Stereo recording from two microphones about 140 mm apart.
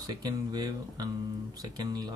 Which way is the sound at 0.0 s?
30° right (ahead or behind).